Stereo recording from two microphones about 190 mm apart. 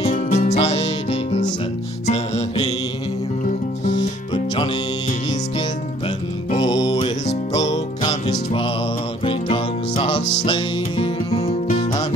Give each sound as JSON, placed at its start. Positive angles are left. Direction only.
{"t": 0.0, "sound": "music", "side_deg": 35}
{"t": 4.3, "sound": "music", "side_deg": 25}
{"t": 6.7, "sound": "music", "side_deg": 20}